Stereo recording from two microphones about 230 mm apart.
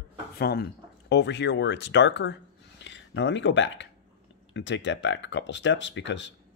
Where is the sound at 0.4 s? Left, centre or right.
Left.